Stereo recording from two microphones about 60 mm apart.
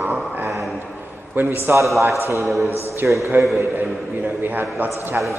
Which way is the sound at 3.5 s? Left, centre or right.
Right.